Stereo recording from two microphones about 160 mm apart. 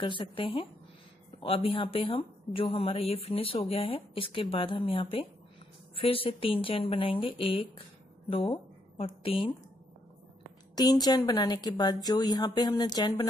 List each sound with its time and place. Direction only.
0.0 s a woman's voice: 30° left (ahead or behind)
10.8 s a woman's voice: 25° left (ahead or behind)